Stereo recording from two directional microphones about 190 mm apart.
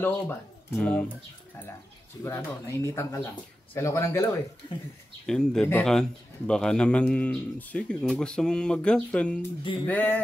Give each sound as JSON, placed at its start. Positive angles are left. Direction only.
{"t": 0.0, "sound": "speech", "side_deg": 10}
{"t": 2.2, "sound": "speech", "side_deg": 15}
{"t": 5.2, "sound": "a man's voice", "side_deg": 5}